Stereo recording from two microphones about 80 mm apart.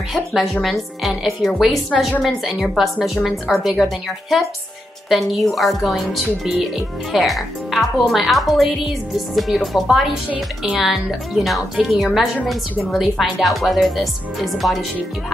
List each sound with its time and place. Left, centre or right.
0.1 s speech: centre